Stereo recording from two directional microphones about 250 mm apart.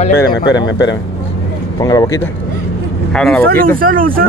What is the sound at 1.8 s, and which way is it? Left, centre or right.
Speech, centre.